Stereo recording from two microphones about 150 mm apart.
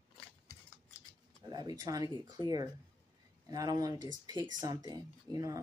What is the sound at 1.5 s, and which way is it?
Speech, 25° right (ahead or behind).